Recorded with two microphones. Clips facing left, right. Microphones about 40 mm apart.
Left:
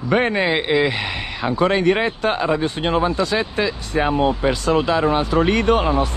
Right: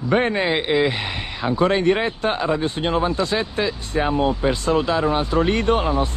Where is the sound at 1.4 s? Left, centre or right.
Left.